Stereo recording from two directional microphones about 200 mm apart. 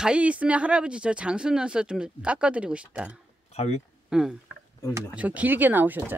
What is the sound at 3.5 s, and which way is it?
Speech, 30° left (ahead or behind).